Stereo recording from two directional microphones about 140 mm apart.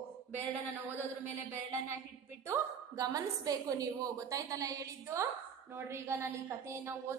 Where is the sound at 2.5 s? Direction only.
25° right (ahead or behind).